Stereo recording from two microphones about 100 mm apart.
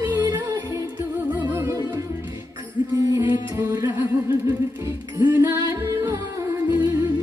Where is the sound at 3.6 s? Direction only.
35° right (ahead or behind).